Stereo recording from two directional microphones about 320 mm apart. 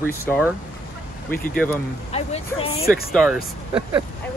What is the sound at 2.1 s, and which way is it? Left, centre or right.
Speech, centre.